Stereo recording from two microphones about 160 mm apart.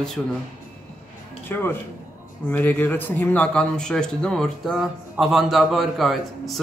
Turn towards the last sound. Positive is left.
turn(degrees=0)  # may be behind; listen again after turning